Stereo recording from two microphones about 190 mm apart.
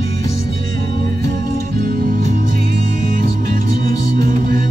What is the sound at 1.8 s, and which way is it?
Music, 50° right (ahead or behind).